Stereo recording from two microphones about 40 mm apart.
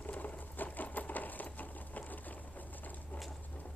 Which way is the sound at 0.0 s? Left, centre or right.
Left.